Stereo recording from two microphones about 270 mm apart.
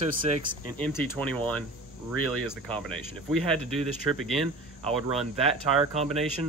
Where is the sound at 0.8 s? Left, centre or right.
Centre.